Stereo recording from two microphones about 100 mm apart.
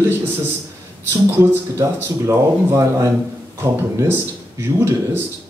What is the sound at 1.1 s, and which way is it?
Speech, 30° right (ahead or behind).